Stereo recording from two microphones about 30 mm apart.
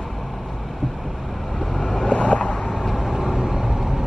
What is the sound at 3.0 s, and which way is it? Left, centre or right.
Vehicle, centre.